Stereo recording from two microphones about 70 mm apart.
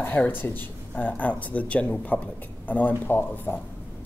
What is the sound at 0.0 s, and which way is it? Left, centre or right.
A woman's voice, left.